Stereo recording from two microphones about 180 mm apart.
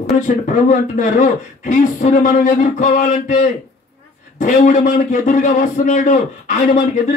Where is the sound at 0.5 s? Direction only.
45° left (ahead or behind).